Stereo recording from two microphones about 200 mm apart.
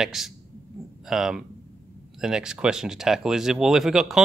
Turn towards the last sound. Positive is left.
turn(degrees=0)  # may be behind; listen again after turning